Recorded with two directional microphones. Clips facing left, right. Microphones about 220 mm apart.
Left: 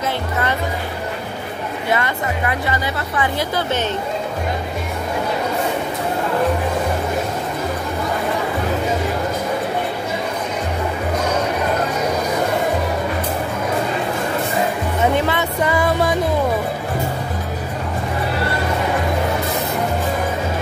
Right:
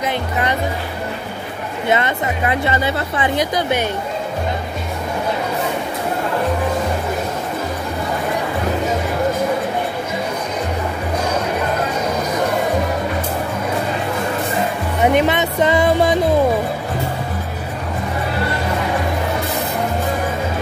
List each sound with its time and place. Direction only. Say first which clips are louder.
0.0 s a sound: right 1 dB; 15° right (ahead or behind)
1.9 s a woman's voice: right 3 dB; 20° right (ahead or behind)
15.1 s a woman's voice: right 3 dB; 20° right (ahead or behind)